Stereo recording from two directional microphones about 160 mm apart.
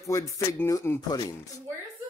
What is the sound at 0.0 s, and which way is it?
Music, 20° left (ahead or behind).